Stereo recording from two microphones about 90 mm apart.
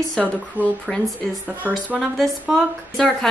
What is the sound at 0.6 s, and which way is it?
Speech, 20° right (ahead or behind).